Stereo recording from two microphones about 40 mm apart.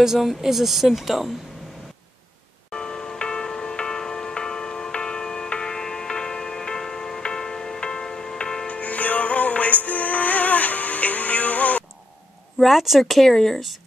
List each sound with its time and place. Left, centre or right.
0.0 s speech: centre
2.7 s music: centre
8.6 s music: left
12.5 s speech: centre